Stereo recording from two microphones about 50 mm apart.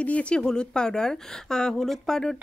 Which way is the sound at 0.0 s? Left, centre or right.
Left.